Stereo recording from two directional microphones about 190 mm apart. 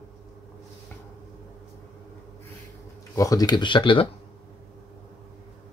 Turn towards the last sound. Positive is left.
turn(degrees=25)  # may be behind; listen again after turning